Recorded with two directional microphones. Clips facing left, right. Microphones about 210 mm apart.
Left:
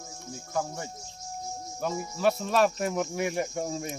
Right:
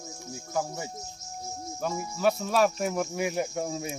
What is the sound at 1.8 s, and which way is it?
Speech, centre (ahead or behind).